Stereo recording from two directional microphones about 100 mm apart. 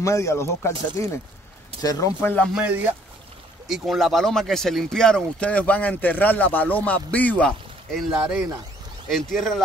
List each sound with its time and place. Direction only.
0.0 s speech: 30° left (ahead or behind)
2.5 s speech: 15° right (ahead or behind)
3.6 s speech: centre (ahead or behind); by 7.5 s 15° left (ahead or behind)
7.9 s speech: 5° right (ahead or behind)